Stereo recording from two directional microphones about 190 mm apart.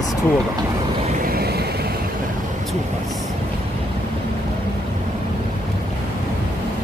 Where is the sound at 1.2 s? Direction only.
55° right (ahead or behind).